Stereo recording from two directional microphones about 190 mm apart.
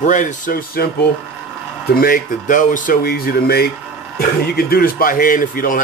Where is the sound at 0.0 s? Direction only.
45° left (ahead or behind).